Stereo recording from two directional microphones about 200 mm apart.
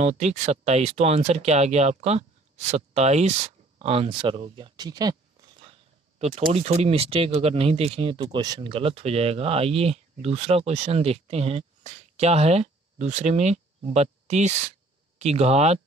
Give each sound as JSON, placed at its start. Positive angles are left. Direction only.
{"t": 0.0, "sound": "speech", "side_deg": -35}
{"t": 5.6, "sound": "a sound", "side_deg": -30}
{"t": 6.5, "sound": "speech", "side_deg": -35}